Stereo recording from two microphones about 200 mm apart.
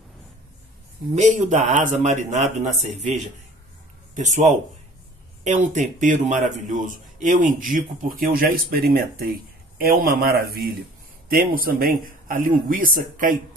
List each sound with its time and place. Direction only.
1.1 s a man's voice: 35° right (ahead or behind)